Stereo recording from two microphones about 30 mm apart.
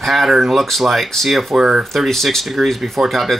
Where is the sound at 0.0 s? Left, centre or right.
Centre.